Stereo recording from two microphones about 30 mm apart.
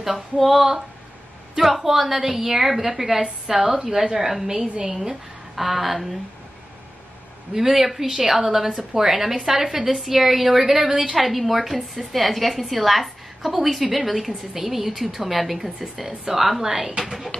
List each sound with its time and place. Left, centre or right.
0.0 s a woman's voice: centre
7.5 s a woman's voice: centre
10.7 s a woman's voice: centre
11.0 s a woman's voice: centre